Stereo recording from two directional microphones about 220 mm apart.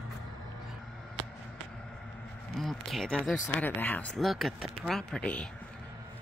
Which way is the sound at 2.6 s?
Centre (ahead or behind).